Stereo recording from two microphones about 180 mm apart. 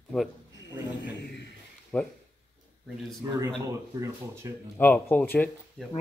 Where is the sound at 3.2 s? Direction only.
20° right (ahead or behind).